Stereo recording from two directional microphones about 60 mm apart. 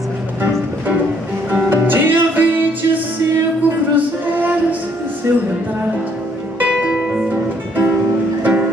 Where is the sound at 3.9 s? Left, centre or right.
Right.